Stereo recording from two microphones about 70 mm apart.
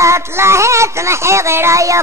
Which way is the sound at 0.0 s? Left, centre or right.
Right.